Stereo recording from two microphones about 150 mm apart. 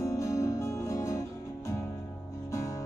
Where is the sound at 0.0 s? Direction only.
20° left (ahead or behind).